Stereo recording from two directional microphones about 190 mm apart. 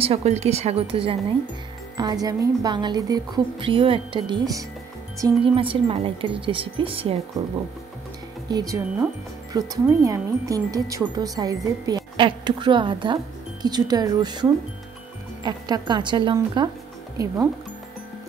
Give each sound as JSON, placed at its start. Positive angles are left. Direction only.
{"t": 0.0, "sound": "speech", "side_deg": -30}
{"t": 8.5, "sound": "speech", "side_deg": -20}